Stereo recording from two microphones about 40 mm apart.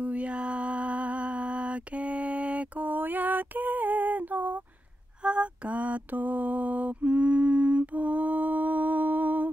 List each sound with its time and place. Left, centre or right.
0.0 s mantra: right
2.8 s a sound: right
5.2 s mantra: right